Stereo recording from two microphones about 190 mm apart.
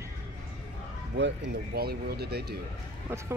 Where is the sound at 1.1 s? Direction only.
65° right (ahead or behind).